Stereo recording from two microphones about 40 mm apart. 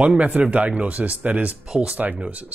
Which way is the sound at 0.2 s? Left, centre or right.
Right.